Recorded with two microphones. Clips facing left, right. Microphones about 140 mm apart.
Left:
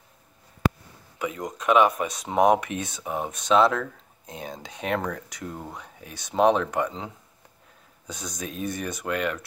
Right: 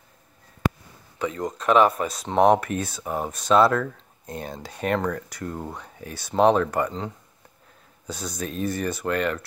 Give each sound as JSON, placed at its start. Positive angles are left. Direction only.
{"t": 1.1, "sound": "a sound", "side_deg": 10}
{"t": 1.4, "sound": "speech", "side_deg": 0}
{"t": 8.1, "sound": "speech", "side_deg": -5}
{"t": 9.1, "sound": "speech", "side_deg": 5}